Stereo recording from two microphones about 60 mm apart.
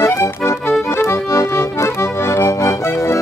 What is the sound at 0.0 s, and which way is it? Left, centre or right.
Music, left.